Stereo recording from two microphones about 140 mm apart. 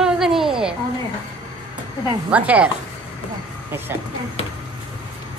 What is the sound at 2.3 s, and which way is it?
Speech, 10° right (ahead or behind).